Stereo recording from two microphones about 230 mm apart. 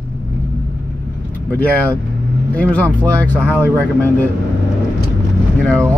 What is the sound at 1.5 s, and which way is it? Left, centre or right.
Speech, centre.